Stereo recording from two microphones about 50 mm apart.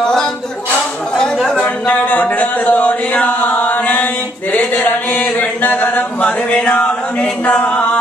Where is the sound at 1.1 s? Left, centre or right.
Centre.